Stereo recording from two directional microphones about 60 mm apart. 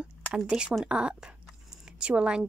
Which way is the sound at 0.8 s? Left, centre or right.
Centre.